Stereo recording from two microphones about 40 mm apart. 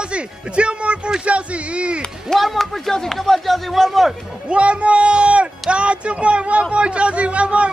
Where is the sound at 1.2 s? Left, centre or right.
Right.